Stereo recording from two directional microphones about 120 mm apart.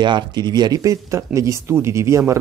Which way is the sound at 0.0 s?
35° right (ahead or behind).